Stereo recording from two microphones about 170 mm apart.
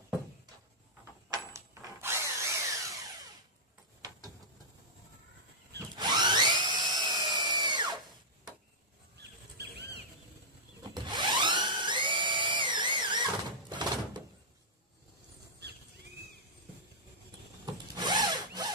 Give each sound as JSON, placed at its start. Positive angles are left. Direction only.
{"t": 1.3, "sound": "drill", "side_deg": -20}
{"t": 5.9, "sound": "drill", "side_deg": -25}
{"t": 9.6, "sound": "a sound", "side_deg": -75}
{"t": 11.1, "sound": "dental drill", "side_deg": -25}
{"t": 17.9, "sound": "drill", "side_deg": -25}